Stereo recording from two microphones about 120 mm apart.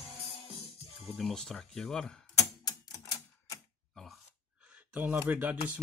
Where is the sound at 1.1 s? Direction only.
Centre (ahead or behind).